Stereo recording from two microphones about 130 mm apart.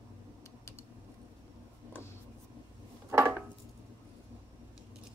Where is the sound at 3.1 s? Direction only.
20° right (ahead or behind).